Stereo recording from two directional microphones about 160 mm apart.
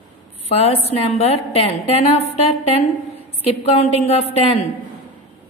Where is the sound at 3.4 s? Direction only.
35° left (ahead or behind).